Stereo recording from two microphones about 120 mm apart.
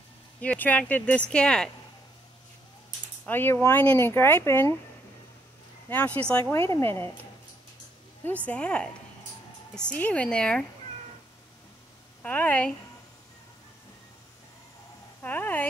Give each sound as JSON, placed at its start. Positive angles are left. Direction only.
{"t": 0.4, "sound": "speech", "side_deg": 15}
{"t": 3.3, "sound": "speech", "side_deg": 15}
{"t": 5.9, "sound": "speech", "side_deg": 15}
{"t": 8.5, "sound": "speech", "side_deg": 10}
{"t": 12.2, "sound": "speech", "side_deg": 10}
{"t": 15.2, "sound": "speech", "side_deg": 15}